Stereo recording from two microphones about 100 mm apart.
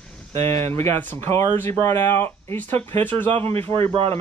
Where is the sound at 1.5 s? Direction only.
20° left (ahead or behind).